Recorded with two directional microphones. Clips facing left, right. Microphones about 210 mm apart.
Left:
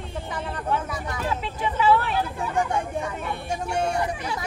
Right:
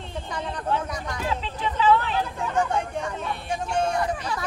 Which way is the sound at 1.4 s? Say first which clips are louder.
Even; 10° left (ahead or behind).